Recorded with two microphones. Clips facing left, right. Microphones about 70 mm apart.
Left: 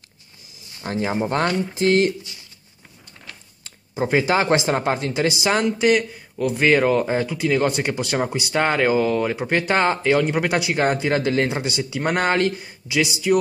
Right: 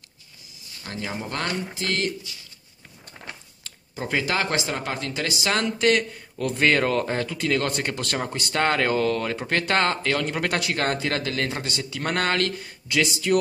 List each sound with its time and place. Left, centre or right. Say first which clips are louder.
0.7 s speech: left 9 dB; left
3.6 s a man's voice: left 8 dB; left